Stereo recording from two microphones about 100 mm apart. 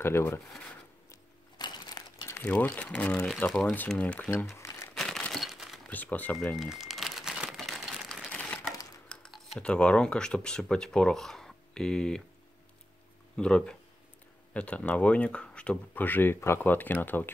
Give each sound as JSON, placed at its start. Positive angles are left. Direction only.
{"t": 0.0, "sound": "speech", "side_deg": 25}
{"t": 1.6, "sound": "a sound", "side_deg": 45}
{"t": 2.2, "sound": "a sound", "side_deg": 25}
{"t": 2.5, "sound": "speech", "side_deg": 15}
{"t": 4.3, "sound": "crumpling", "side_deg": 25}
{"t": 4.9, "sound": "crumpling", "side_deg": 5}
{"t": 5.9, "sound": "speech", "side_deg": 15}
{"t": 6.3, "sound": "crumpling", "side_deg": 0}
{"t": 8.3, "sound": "crumpling", "side_deg": 15}
{"t": 9.1, "sound": "typing", "side_deg": 10}
{"t": 9.6, "sound": "speech", "side_deg": 10}
{"t": 13.4, "sound": "speech", "side_deg": 10}